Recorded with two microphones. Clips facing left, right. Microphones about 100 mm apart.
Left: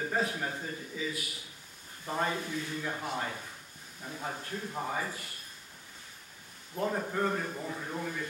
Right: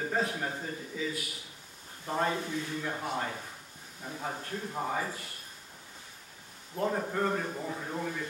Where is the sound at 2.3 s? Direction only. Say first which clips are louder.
Right 2 dB; 20° right (ahead or behind).